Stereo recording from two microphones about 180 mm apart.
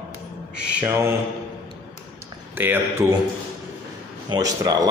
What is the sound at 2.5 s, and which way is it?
Speech, 10° right (ahead or behind).